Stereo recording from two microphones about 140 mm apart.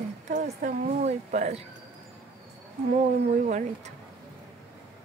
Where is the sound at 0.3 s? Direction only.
75° right (ahead or behind); by 1.6 s 55° right (ahead or behind).